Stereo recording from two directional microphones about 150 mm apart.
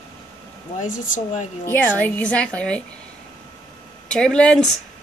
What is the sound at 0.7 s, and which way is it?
Speech, 60° left (ahead or behind).